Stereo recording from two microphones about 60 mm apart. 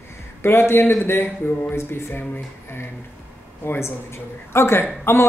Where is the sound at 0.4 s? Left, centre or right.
Left.